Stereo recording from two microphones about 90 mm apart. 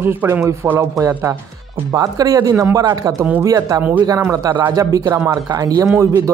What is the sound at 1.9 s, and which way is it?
Speech, 40° right (ahead or behind).